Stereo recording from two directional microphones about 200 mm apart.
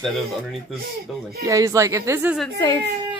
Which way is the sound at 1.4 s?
15° right (ahead or behind).